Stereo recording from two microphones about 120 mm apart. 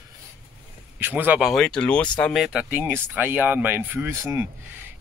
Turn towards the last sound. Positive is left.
turn(degrees=-20)  # may be behind; listen again after turning